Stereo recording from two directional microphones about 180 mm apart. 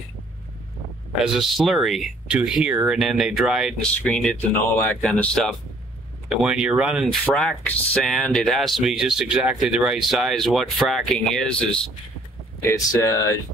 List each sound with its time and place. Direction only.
1.2 s speech: centre (ahead or behind)
12.6 s speech: 15° left (ahead or behind)